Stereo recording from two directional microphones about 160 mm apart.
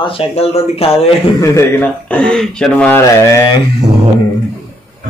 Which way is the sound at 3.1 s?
20° left (ahead or behind).